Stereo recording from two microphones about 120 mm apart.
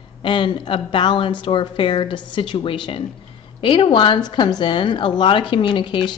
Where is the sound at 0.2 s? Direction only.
45° left (ahead or behind).